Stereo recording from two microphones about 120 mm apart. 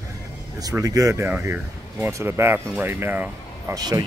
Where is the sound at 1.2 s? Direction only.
15° right (ahead or behind).